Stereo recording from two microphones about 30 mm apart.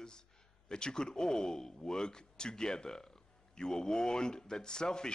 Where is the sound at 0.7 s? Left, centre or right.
Left.